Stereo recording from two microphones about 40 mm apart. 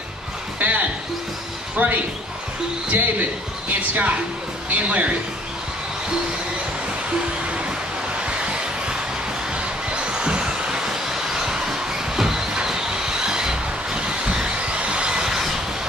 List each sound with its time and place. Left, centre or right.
0.6 s music: right
1.8 s a man's voice: right
8.2 s a sound: right
9.8 s train: right